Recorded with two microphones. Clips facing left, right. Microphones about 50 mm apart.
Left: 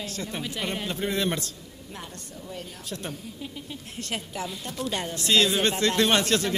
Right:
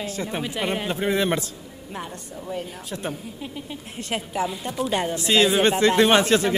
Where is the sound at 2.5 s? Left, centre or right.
Centre.